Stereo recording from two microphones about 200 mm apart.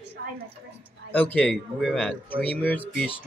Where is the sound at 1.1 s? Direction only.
10° left (ahead or behind).